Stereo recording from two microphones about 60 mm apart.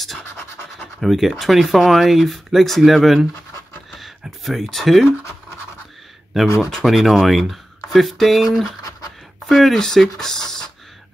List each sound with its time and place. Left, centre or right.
0.2 s scratch: left
1.0 s speech: centre
4.5 s speech: centre
6.4 s speech: centre